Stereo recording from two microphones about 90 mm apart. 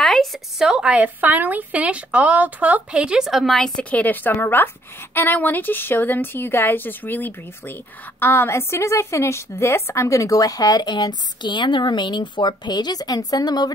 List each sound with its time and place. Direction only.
0.0 s a woman's voice: 5° left (ahead or behind)
3.9 s a woman's voice: 20° left (ahead or behind); by 13.7 s 50° left (ahead or behind)